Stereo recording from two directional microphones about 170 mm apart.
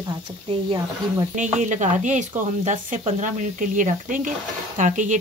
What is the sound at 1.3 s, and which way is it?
Speech, 45° right (ahead or behind).